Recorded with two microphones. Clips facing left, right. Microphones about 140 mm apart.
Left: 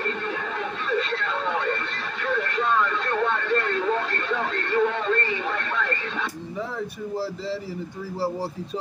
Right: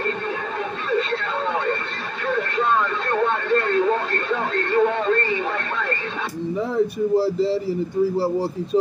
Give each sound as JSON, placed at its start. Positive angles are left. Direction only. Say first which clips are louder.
{"t": 4.1, "sound": "radio", "louder": "right 4 dB", "side_deg": -45}